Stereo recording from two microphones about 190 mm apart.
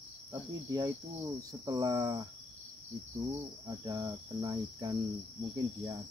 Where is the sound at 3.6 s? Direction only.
20° right (ahead or behind).